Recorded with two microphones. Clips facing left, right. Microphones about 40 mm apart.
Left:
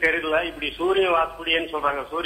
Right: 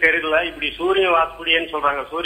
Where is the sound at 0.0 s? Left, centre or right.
Right.